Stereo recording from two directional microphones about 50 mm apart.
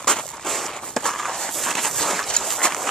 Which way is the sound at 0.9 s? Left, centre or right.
Centre.